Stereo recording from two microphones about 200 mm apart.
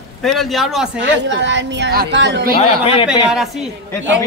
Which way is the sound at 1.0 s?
65° right (ahead or behind).